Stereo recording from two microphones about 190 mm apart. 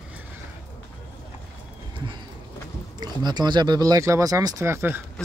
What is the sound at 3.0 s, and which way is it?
Speech, 20° right (ahead or behind).